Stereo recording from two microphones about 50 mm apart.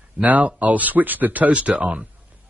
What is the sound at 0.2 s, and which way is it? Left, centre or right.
Speech, right.